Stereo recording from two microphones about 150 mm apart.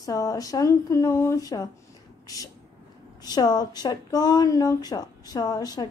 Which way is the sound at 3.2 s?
25° left (ahead or behind).